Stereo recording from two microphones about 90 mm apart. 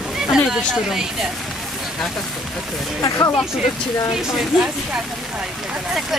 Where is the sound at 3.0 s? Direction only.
40° left (ahead or behind).